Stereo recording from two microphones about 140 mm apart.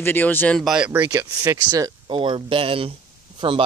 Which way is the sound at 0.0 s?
15° left (ahead or behind).